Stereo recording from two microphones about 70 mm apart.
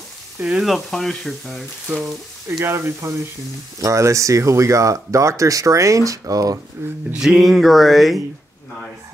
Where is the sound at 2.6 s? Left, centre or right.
Right.